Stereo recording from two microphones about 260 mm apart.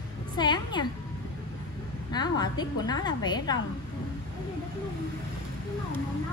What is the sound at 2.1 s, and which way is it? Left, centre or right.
A woman's voice, centre.